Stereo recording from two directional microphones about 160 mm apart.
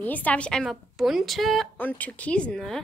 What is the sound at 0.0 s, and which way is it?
A woman's voice, 10° left (ahead or behind).